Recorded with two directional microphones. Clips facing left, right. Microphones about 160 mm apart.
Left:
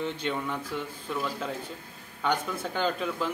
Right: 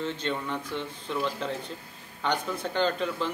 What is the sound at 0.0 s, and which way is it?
A man's voice, 10° left (ahead or behind).